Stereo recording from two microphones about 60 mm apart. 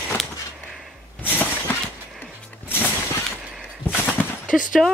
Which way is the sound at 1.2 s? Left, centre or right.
Left.